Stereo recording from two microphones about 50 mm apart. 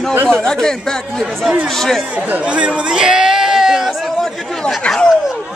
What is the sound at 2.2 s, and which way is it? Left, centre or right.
Speech, right.